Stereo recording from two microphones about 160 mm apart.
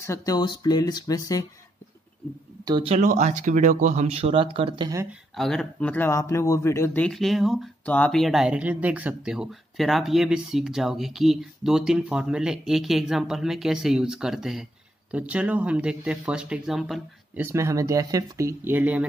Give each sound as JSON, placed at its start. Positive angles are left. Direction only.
{"t": 0.0, "sound": "speech", "side_deg": 20}
{"t": 2.6, "sound": "speech", "side_deg": -25}
{"t": 2.9, "sound": "speech", "side_deg": -50}
{"t": 5.3, "sound": "speech", "side_deg": 0}
{"t": 7.1, "sound": "speech", "side_deg": 0}
{"t": 17.4, "sound": "speech", "side_deg": -15}